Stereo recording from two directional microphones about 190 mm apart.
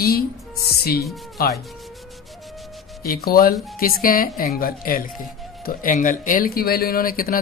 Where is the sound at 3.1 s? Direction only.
55° left (ahead or behind).